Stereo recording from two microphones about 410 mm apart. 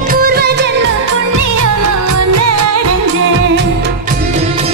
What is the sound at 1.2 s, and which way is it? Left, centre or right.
Music, right.